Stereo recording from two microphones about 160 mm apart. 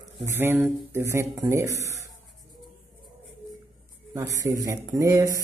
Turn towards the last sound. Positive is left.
turn(degrees=-20)  # may be behind; listen again after turning